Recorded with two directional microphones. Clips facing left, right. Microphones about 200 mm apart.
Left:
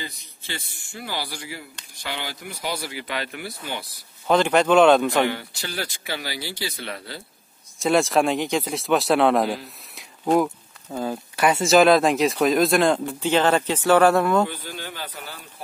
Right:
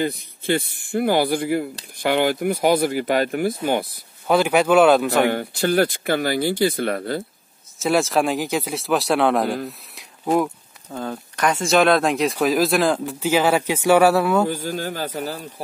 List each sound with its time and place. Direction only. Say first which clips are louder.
0.0 s speech: right 14 dB; 55° right (ahead or behind)
4.3 s speech: right 1 dB; 10° right (ahead or behind)
5.2 s speech: right 5 dB; 50° right (ahead or behind)
7.8 s speech: even; centre (ahead or behind)
9.7 s snake: right 8 dB; centre (ahead or behind)
11.0 s speech: left 1 dB; 10° left (ahead or behind); by 14.5 s 5° right (ahead or behind)
14.5 s speech: right 9 dB; 45° right (ahead or behind)